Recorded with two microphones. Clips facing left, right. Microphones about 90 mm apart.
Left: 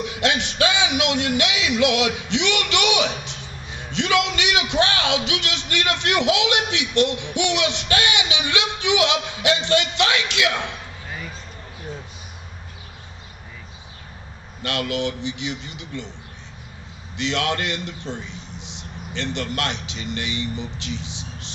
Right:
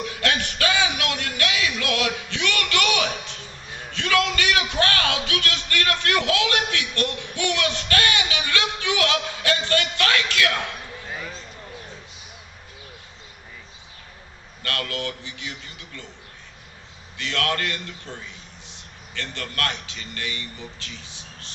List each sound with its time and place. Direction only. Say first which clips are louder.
0.0 s a man's voice: left 2 dB; 20° left (ahead or behind)
14.6 s a man's voice: left 5 dB; 20° left (ahead or behind)
17.2 s a man's voice: left 2 dB; 20° left (ahead or behind)